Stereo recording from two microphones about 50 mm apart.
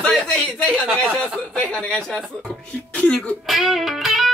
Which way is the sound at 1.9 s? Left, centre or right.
Centre.